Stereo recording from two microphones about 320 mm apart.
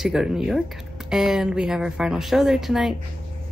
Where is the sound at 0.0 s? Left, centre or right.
Centre.